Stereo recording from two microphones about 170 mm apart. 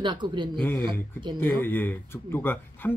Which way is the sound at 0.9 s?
25° right (ahead or behind).